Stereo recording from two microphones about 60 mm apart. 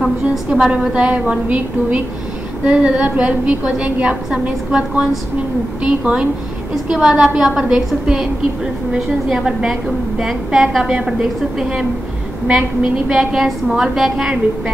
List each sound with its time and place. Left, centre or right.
0.7 s a woman's voice: centre
6.7 s a woman's voice: centre